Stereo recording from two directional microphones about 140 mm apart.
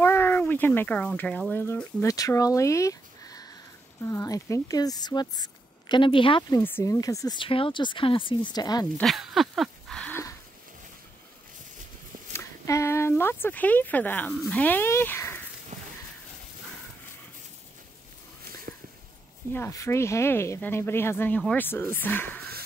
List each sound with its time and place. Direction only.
0.0 s speech: 15° left (ahead or behind); by 6.4 s 40° left (ahead or behind)
6.5 s speech: 20° left (ahead or behind)
7.3 s speech: 40° left (ahead or behind)
9.0 s a sound: centre (ahead or behind)
12.3 s a sound: 20° left (ahead or behind)
14.4 s speech: 10° left (ahead or behind)
15.7 s a sound: 55° right (ahead or behind)
19.5 s speech: 20° left (ahead or behind)
21.4 s speech: 5° left (ahead or behind)
21.9 s speech: 15° left (ahead or behind)